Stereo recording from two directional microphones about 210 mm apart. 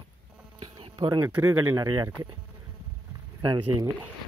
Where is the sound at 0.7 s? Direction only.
25° right (ahead or behind).